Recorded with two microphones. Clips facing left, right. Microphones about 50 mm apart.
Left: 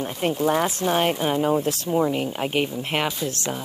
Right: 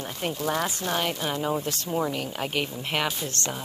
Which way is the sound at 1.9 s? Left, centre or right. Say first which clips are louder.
Left 5 dB; centre.